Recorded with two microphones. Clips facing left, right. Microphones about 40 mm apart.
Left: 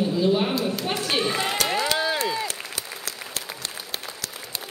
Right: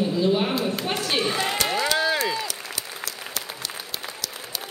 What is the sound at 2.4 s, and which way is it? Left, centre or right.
Applause, left.